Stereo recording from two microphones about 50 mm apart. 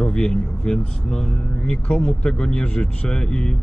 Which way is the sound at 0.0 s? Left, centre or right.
Centre.